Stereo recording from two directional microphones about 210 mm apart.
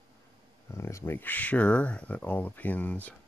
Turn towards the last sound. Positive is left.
turn(degrees=5)  # may be behind; listen again after turning